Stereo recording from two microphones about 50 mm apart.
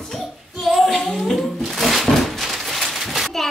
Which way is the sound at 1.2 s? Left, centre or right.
Centre.